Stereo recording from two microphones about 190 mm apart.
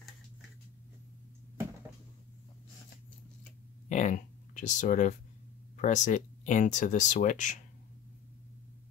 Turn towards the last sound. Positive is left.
turn(degrees=40)  # may be behind; listen again after turning